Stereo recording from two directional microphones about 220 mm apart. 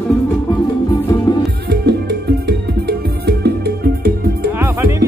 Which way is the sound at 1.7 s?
50° right (ahead or behind).